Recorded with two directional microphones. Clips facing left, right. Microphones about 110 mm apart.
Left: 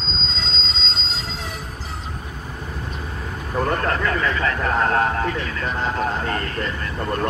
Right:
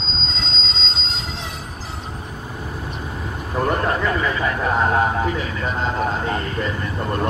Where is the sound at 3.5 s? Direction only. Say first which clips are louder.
Right 1 dB; 10° right (ahead or behind).